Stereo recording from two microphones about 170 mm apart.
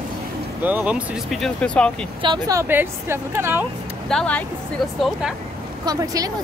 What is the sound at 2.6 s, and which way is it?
A woman's voice, 15° right (ahead or behind).